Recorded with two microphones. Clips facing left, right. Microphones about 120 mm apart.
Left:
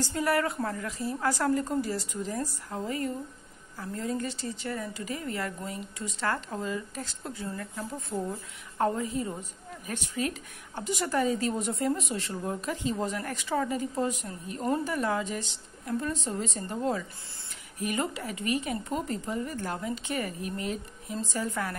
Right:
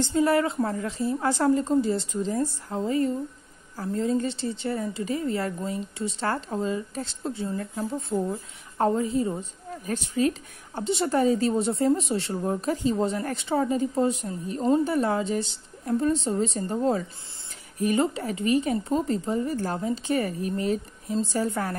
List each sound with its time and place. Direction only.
0.0 s a woman's voice: 25° right (ahead or behind)